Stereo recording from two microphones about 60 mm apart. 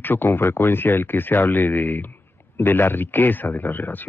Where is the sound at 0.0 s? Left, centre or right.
Left.